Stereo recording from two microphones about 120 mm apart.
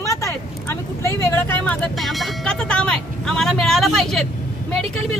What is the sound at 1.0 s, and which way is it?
Speech, 20° left (ahead or behind).